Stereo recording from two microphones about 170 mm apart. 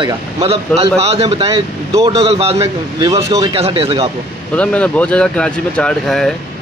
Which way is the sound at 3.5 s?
35° right (ahead or behind).